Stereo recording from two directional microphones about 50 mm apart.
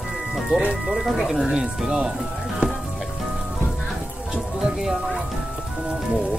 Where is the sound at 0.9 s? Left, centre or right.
Centre.